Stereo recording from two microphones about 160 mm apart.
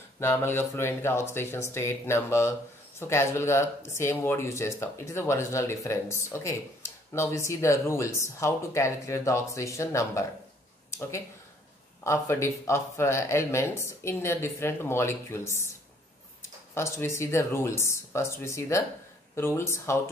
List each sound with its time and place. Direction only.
0.2 s speech: 15° left (ahead or behind)
16.7 s speech: 15° left (ahead or behind)